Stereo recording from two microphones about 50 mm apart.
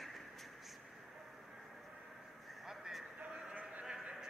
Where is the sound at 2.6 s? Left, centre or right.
Centre.